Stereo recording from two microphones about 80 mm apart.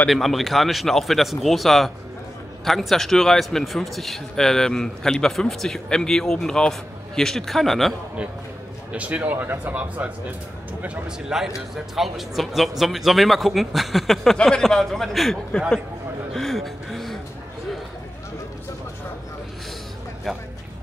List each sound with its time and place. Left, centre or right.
0.1 s speech: centre
8.9 s speech: centre
11.1 s speech: centre